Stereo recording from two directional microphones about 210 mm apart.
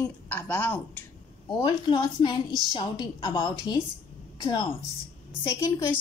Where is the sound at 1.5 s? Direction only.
20° left (ahead or behind).